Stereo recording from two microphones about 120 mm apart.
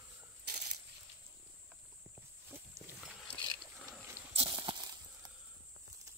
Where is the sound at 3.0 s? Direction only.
5° right (ahead or behind).